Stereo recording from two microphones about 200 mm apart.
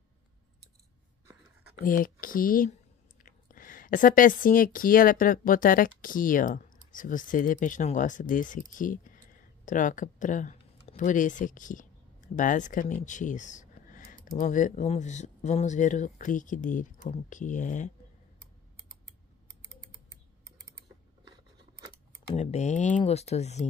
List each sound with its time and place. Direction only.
1.8 s speech: 45° left (ahead or behind)
22.3 s speech: 35° left (ahead or behind)